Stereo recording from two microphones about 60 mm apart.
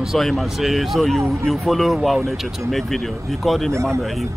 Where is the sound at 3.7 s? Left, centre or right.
Right.